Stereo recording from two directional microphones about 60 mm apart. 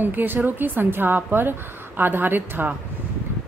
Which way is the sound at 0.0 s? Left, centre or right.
Right.